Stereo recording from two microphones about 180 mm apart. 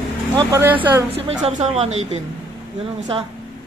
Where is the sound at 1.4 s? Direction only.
35° right (ahead or behind).